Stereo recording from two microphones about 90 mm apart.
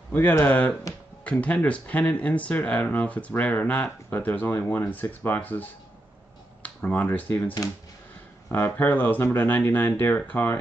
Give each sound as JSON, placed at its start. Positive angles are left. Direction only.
{"t": 0.1, "sound": "speech", "side_deg": 25}